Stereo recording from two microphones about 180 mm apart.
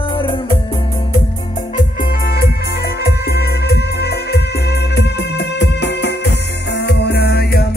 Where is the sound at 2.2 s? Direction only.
60° left (ahead or behind).